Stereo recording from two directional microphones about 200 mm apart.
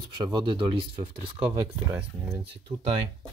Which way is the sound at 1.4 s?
10° right (ahead or behind).